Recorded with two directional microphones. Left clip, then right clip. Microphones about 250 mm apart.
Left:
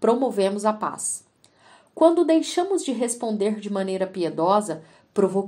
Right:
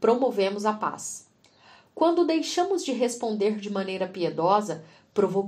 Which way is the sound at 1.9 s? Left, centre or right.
Left.